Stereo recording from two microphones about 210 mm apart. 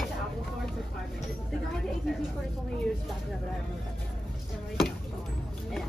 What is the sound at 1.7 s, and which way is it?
Speech, centre (ahead or behind).